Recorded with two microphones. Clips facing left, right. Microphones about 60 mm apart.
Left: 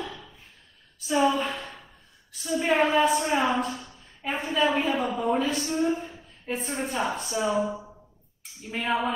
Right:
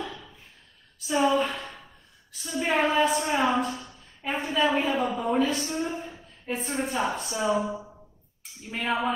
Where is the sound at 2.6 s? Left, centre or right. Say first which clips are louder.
Left 1 dB; centre.